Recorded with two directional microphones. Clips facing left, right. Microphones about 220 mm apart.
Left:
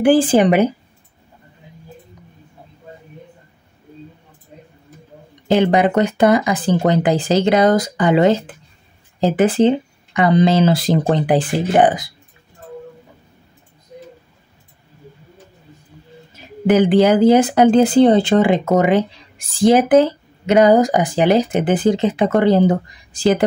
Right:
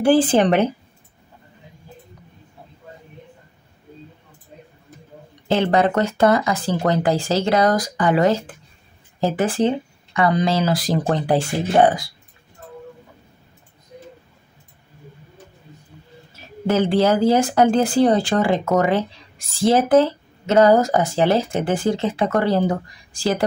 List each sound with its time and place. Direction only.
0.0 s speech: 15° left (ahead or behind)
5.5 s speech: 15° left (ahead or behind)
16.3 s speech: 15° left (ahead or behind)